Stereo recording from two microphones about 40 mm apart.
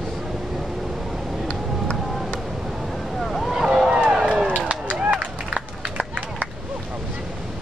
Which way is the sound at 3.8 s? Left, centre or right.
Centre.